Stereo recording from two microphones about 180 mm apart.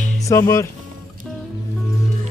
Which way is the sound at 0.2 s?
15° left (ahead or behind).